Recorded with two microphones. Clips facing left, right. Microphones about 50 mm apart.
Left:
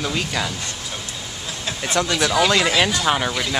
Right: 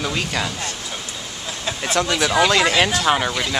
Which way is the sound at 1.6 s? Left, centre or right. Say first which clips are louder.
Right 1 dB; centre.